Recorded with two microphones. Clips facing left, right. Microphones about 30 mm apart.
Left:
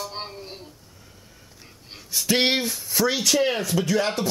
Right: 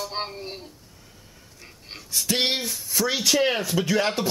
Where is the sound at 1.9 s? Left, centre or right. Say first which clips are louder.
Left 3 dB; centre.